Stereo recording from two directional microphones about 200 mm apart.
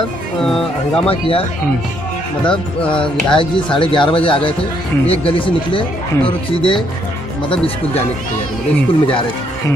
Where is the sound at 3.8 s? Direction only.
25° left (ahead or behind).